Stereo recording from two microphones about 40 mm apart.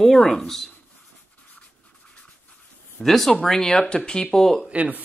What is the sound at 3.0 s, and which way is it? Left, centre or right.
Speech, centre.